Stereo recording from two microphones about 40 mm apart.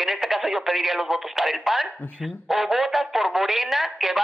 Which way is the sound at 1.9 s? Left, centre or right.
Left.